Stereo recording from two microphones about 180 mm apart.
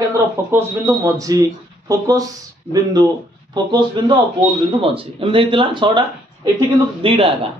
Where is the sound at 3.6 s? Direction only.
25° right (ahead or behind).